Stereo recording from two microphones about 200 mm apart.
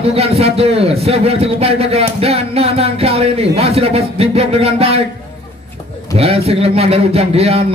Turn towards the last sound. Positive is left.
turn(degrees=-30)  # may be behind; listen again after turning